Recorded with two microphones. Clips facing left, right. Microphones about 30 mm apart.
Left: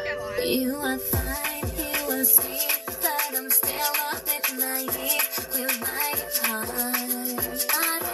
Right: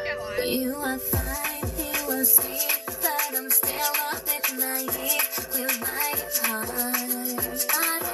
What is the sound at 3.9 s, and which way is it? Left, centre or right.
Music, left.